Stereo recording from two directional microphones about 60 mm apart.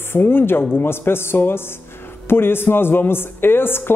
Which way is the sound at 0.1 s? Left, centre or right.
Left.